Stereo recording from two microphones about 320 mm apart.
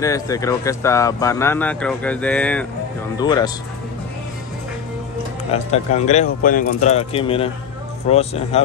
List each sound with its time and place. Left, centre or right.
0.0 s speech: centre
5.5 s speech: left